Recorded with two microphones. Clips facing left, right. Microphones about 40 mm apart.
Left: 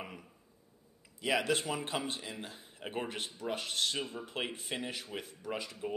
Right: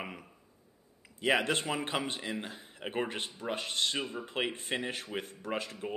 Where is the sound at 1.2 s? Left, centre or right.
Right.